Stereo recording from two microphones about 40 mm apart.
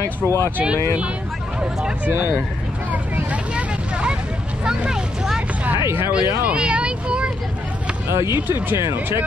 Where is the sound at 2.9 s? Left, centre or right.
Right.